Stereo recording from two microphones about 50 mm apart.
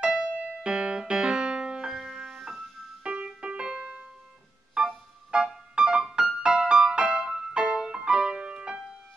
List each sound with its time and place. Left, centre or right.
0.0 s music: right
1.9 s music: centre
3.0 s music: centre
5.3 s music: centre